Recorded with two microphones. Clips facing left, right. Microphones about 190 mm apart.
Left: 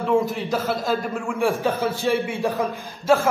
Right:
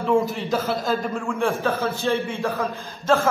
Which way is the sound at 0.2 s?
Centre (ahead or behind).